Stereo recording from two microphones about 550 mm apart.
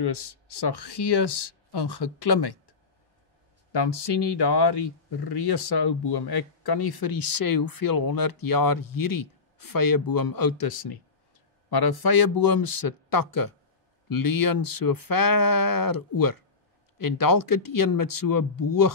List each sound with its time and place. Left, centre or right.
0.0 s speech: left
3.7 s speech: left